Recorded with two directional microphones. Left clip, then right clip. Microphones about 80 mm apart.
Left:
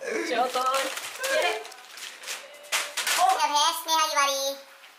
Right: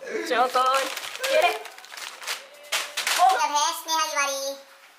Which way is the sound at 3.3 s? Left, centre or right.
Centre.